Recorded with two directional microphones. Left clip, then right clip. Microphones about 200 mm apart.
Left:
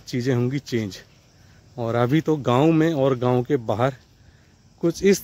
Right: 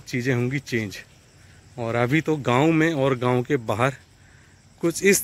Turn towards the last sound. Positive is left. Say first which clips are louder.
# even
turn(degrees=10)  # may be behind; listen again after turning